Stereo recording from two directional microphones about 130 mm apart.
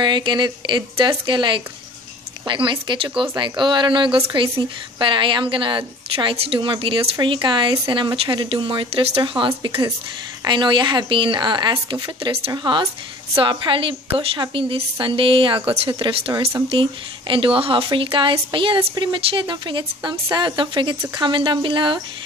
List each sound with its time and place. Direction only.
0.0 s a woman's voice: 35° right (ahead or behind)